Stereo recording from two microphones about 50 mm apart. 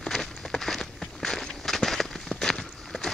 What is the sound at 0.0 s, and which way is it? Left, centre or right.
Walk, centre.